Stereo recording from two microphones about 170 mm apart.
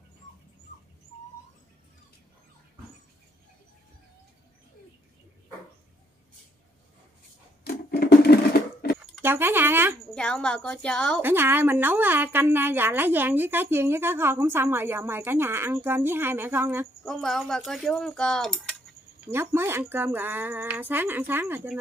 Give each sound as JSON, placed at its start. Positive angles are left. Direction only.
{"t": 7.6, "sound": "sewing machine", "side_deg": 70}
{"t": 9.2, "sound": "a woman's voice", "side_deg": -15}
{"t": 10.1, "sound": "speech", "side_deg": 5}
{"t": 11.1, "sound": "a woman's voice", "side_deg": -15}
{"t": 17.0, "sound": "speech", "side_deg": 0}
{"t": 19.3, "sound": "a woman's voice", "side_deg": -15}